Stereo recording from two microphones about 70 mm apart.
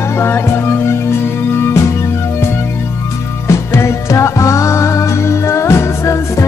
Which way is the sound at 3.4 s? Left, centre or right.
Left.